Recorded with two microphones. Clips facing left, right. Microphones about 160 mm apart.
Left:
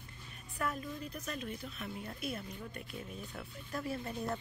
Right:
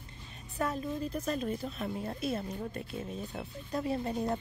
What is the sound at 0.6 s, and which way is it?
A woman's voice, 25° right (ahead or behind).